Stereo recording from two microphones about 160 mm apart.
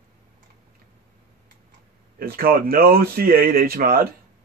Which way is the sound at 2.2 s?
65° right (ahead or behind).